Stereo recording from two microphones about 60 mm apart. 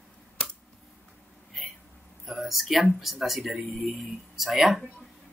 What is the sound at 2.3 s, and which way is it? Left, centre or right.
Speech, centre.